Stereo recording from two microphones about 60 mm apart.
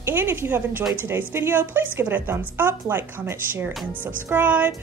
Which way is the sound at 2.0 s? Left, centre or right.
Right.